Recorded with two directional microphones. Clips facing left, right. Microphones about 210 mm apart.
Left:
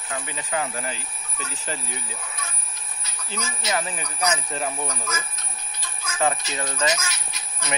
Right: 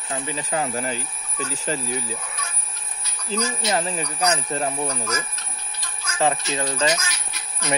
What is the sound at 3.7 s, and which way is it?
Speech, 30° right (ahead or behind).